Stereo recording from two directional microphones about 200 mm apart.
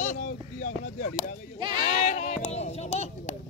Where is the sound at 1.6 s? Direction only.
20° right (ahead or behind).